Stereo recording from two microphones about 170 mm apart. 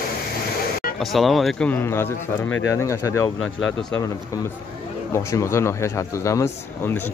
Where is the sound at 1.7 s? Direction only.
15° left (ahead or behind).